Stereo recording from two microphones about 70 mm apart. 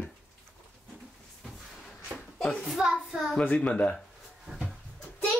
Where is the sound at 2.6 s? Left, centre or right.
Centre.